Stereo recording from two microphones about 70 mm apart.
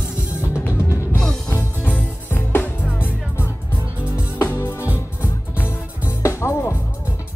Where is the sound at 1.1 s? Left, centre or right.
Centre.